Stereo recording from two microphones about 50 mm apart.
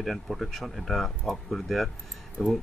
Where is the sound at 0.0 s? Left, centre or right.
Centre.